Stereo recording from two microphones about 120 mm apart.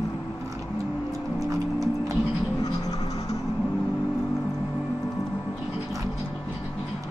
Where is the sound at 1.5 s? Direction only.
30° right (ahead or behind).